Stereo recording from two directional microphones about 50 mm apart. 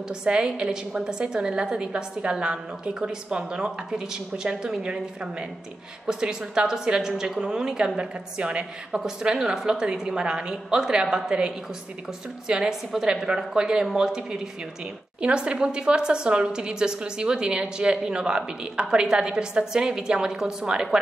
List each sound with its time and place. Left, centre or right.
0.1 s a woman's voice: centre